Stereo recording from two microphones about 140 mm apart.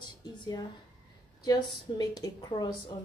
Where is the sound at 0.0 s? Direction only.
30° left (ahead or behind).